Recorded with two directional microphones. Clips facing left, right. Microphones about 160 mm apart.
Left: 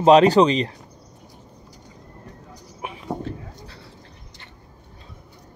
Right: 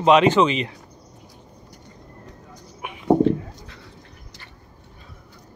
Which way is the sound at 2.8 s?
30° left (ahead or behind).